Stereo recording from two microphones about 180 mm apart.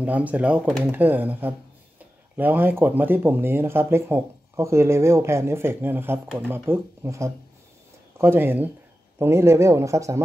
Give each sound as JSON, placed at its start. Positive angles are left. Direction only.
{"t": 0.0, "sound": "speech", "side_deg": -10}